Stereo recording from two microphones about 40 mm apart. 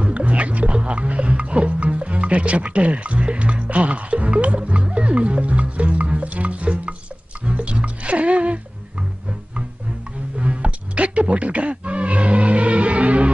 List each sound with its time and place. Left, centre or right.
0.0 s music: right
10.4 s music: right